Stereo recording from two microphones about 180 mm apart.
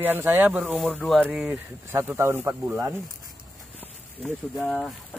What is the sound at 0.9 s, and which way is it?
Speech, 5° left (ahead or behind).